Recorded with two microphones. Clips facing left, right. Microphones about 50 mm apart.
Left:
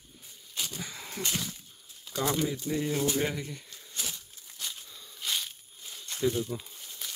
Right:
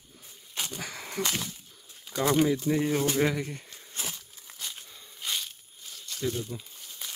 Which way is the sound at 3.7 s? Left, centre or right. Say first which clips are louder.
Right 1 dB; right.